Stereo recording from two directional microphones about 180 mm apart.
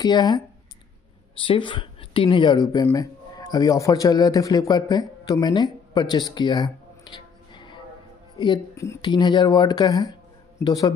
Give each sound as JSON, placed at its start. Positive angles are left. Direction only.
{"t": 0.0, "sound": "speech", "side_deg": 20}
{"t": 1.4, "sound": "a man's voice", "side_deg": 25}